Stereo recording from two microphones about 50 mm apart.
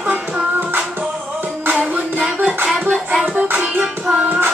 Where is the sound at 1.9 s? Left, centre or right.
Right.